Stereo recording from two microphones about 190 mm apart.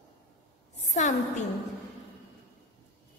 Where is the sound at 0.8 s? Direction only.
40° left (ahead or behind).